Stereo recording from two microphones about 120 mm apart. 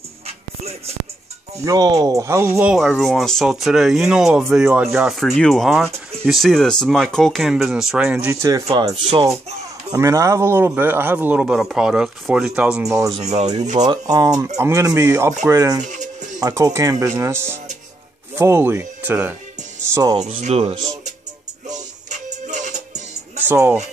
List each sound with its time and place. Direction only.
1.6 s speech: 30° right (ahead or behind)
2.6 s speech: centre (ahead or behind)
8.3 s speech: 25° right (ahead or behind)
8.9 s speech: 50° right (ahead or behind)
9.8 s speech: 25° right (ahead or behind); by 12.8 s 5° right (ahead or behind)
12.8 s speech: 25° right (ahead or behind)
15.8 s music: 90° right
16.3 s speech: 30° right (ahead or behind)
19.8 s speech: 25° right (ahead or behind)
20.2 s speech: 70° right (ahead or behind)
20.7 s speech: 30° right (ahead or behind)
22.1 s music: 90° right